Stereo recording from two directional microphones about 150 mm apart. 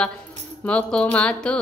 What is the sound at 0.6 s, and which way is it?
Music, 10° left (ahead or behind).